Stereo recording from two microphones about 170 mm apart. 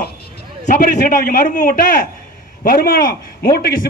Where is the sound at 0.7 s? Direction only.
55° left (ahead or behind).